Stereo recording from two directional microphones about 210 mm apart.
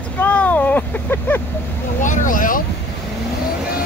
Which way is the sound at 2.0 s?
35° left (ahead or behind).